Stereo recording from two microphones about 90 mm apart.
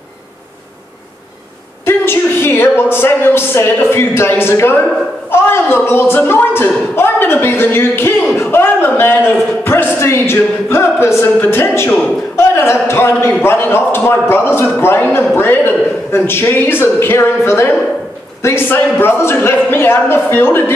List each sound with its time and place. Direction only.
1.9 s a sound: 25° left (ahead or behind)
3.9 s music: 25° left (ahead or behind)
7.0 s speech: 25° left (ahead or behind)
8.4 s a sound: 25° left (ahead or behind)
9.7 s music: 25° left (ahead or behind)
12.4 s a man's voice: 30° left (ahead or behind)
13.4 s music: 25° left (ahead or behind)